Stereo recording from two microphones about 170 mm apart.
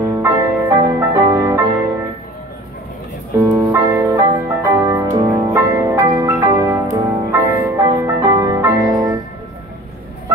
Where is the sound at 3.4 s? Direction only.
15° right (ahead or behind).